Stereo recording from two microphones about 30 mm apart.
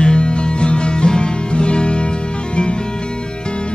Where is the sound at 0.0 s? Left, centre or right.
Left.